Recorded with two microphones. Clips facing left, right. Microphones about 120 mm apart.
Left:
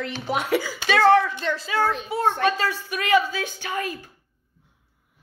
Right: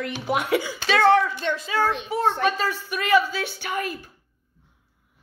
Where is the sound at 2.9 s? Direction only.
15° left (ahead or behind).